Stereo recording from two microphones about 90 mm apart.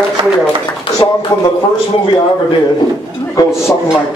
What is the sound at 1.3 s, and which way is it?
Speech, 50° left (ahead or behind).